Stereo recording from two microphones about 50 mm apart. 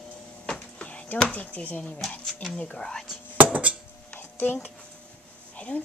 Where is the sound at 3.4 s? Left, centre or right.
Right.